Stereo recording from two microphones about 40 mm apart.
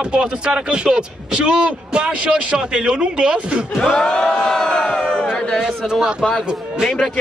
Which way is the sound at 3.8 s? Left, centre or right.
Centre.